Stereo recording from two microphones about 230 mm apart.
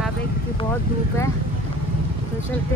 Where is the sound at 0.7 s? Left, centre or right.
Centre.